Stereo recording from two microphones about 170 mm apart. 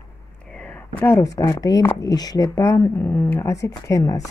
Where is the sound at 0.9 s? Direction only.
15° left (ahead or behind).